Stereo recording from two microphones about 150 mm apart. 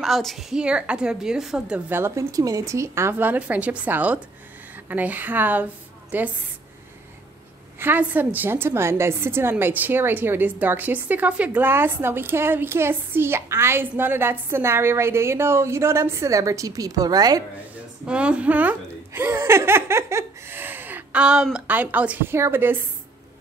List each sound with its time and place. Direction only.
0.0 s a woman's voice: centre (ahead or behind)
1.9 s a woman's voice: 15° right (ahead or behind)
7.8 s a woman's voice: 10° right (ahead or behind)
18.0 s speech: 5° right (ahead or behind)